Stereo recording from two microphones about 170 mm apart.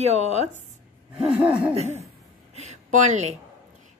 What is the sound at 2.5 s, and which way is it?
Speech, 45° right (ahead or behind).